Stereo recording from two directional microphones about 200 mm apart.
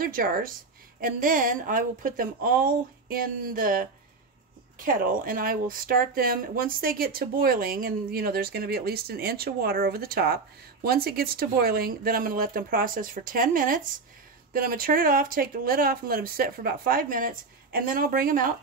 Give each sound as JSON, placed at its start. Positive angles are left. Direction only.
{"t": 0.0, "sound": "speech", "side_deg": -45}